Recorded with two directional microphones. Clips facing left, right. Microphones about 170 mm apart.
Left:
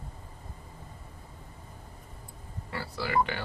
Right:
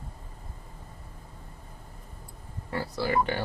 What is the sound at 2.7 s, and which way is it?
Speech, 35° right (ahead or behind).